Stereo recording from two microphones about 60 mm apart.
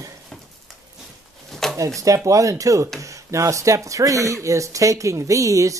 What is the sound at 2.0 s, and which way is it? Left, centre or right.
Speech, right.